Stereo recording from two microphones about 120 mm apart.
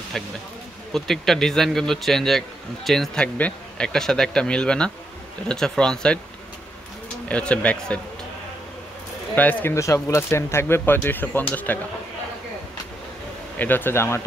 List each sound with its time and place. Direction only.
0.1 s a man's voice: 5° left (ahead or behind)
7.2 s speech: 10° left (ahead or behind)
9.3 s speech: 15° left (ahead or behind)
13.6 s speech: 15° left (ahead or behind)